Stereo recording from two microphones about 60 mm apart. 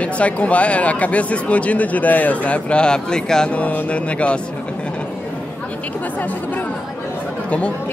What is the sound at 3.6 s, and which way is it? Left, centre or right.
Speech, left.